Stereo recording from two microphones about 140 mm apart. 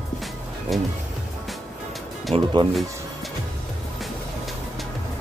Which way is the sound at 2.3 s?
45° right (ahead or behind).